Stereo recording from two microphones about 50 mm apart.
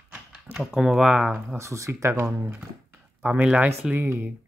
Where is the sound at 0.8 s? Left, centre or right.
Centre.